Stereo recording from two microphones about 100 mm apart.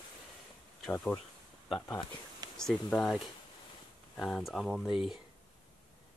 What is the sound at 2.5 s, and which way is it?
Speech, 5° left (ahead or behind).